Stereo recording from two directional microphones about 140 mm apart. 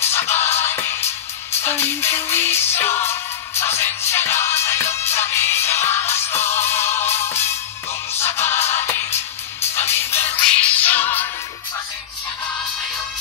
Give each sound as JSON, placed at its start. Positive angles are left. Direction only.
{"t": 0.0, "sound": "music", "side_deg": 15}